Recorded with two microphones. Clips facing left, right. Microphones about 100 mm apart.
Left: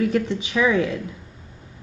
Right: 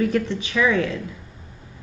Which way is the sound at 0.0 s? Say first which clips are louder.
Even; 5° left (ahead or behind).